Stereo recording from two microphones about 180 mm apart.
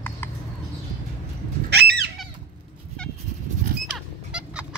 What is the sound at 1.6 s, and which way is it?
Fowl, 60° right (ahead or behind).